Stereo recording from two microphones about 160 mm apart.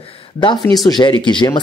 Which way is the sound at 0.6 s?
Centre (ahead or behind).